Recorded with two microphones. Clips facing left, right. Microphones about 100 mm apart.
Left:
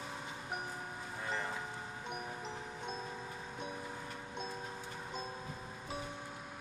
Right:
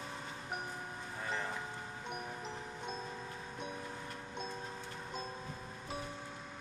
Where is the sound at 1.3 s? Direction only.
Centre (ahead or behind).